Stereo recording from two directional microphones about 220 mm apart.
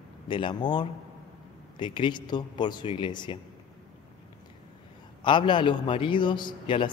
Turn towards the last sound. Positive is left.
turn(degrees=20)  # may be behind; listen again after turning